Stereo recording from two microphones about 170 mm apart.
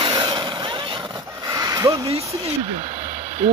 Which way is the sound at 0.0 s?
25° right (ahead or behind).